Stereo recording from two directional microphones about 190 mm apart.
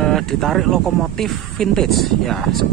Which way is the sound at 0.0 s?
Centre (ahead or behind).